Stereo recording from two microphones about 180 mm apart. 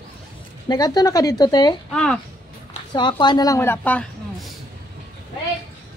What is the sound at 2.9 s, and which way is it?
Speech, 25° left (ahead or behind).